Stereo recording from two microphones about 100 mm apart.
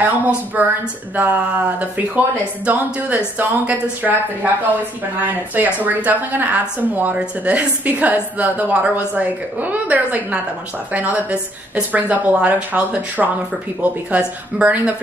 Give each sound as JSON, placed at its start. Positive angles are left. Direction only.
{"t": 0.0, "sound": "a woman's voice", "side_deg": -15}